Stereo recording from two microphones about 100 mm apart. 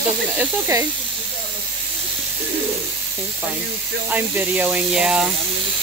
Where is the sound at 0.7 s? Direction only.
35° right (ahead or behind).